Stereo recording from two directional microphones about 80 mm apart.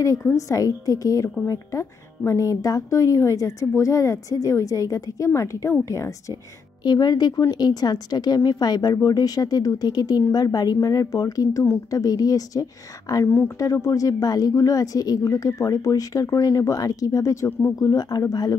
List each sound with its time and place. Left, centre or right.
0.0 s a woman's voice: left
6.8 s a woman's voice: left
13.2 s speech: left
13.6 s a woman's voice: left
17.7 s a woman's voice: left